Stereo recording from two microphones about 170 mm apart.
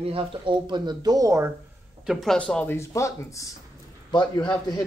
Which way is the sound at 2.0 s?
Centre (ahead or behind).